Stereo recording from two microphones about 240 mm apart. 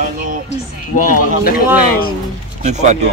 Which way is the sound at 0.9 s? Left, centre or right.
Left.